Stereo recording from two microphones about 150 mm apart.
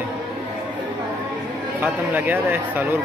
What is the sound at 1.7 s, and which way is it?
Speech, 15° right (ahead or behind).